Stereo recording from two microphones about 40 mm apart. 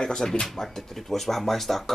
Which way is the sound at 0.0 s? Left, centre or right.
Centre.